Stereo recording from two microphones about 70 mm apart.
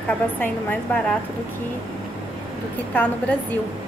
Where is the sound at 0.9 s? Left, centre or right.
Left.